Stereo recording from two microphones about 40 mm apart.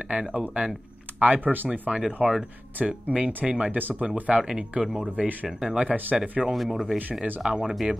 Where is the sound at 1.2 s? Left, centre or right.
Right.